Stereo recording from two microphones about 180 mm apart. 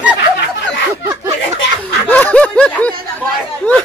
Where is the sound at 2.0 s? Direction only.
10° left (ahead or behind).